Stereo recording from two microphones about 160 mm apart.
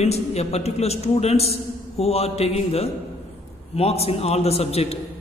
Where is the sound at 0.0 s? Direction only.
40° left (ahead or behind).